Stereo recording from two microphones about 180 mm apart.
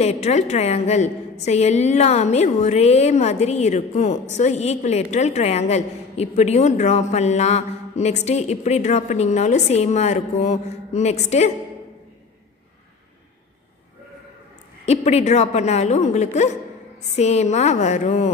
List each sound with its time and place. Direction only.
0.0 s a woman's voice: 35° left (ahead or behind)
14.9 s a woman's voice: 35° left (ahead or behind)